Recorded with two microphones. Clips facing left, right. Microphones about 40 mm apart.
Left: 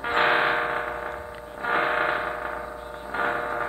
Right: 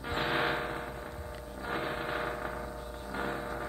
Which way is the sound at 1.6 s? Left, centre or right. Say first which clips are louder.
Left 12 dB; left.